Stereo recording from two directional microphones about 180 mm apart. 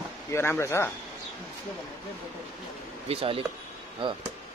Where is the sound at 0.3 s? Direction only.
15° left (ahead or behind).